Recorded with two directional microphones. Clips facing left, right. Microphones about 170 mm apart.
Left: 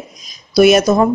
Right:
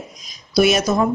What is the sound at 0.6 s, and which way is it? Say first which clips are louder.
Speech: left 7 dB; 55° left (ahead or behind).